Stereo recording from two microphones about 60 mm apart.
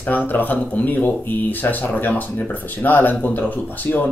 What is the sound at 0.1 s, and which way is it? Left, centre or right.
Speech, left.